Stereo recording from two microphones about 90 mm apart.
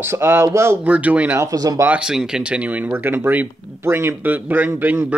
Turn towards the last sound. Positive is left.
turn(degrees=-20)  # may be behind; listen again after turning